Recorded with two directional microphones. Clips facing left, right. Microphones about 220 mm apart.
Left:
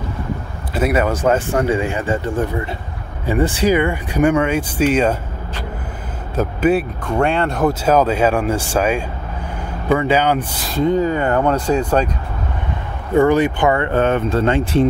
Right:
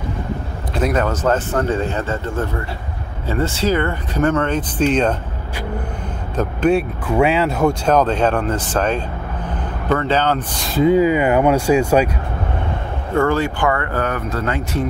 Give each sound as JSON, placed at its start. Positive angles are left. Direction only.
{"t": 0.7, "sound": "speech", "side_deg": 5}
{"t": 6.3, "sound": "speech", "side_deg": 5}
{"t": 7.1, "sound": "speech", "side_deg": -5}
{"t": 10.7, "sound": "speech", "side_deg": -5}
{"t": 13.1, "sound": "speech", "side_deg": 15}